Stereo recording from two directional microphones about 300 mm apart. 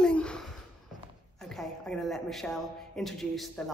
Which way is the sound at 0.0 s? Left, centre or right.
Centre.